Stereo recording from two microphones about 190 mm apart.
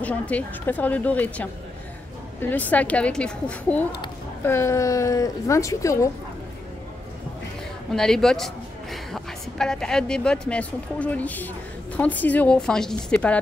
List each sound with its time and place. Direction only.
0.0 s speech: 10° left (ahead or behind)
7.9 s a man's voice: centre (ahead or behind)